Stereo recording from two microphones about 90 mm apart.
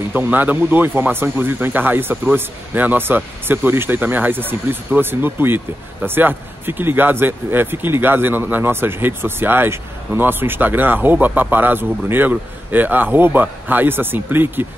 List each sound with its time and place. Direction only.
0.1 s speech: 20° right (ahead or behind)